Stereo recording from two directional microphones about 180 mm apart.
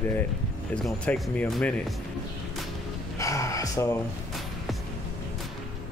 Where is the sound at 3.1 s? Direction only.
20° left (ahead or behind).